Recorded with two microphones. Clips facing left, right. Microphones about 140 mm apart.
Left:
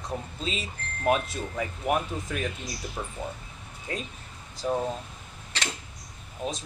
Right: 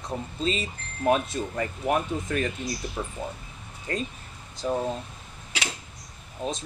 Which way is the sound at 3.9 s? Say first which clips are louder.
Right 4 dB; 5° left (ahead or behind).